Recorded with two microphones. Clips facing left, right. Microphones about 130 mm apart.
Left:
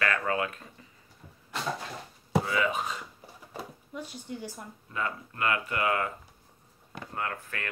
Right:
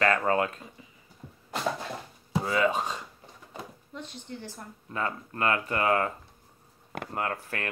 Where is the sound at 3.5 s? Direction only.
10° left (ahead or behind).